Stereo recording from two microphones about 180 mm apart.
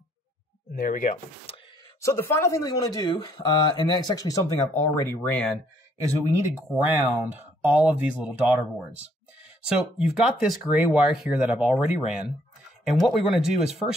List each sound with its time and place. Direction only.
0.7 s speech: 50° left (ahead or behind)
1.1 s speech: 35° left (ahead or behind)
2.0 s speech: 15° left (ahead or behind)
6.0 s speech: 20° right (ahead or behind)
13.0 s speech: 5° right (ahead or behind)